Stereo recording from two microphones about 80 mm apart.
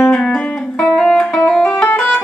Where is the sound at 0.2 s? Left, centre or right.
Centre.